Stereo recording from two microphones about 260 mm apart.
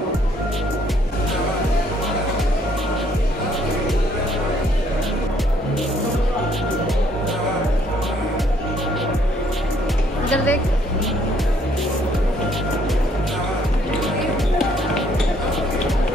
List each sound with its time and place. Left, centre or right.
10.3 s music: centre